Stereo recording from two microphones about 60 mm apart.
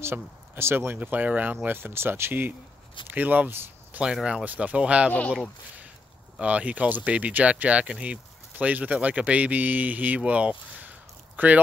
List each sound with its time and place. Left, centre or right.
0.0 s speech: right
0.9 s speech: right
4.0 s speech: centre
4.5 s speech: right
6.4 s speech: right